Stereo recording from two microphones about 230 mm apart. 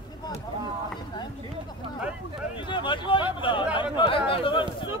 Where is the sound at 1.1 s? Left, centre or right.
Centre.